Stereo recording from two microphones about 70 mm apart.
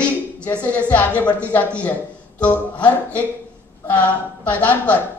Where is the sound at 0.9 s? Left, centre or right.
Left.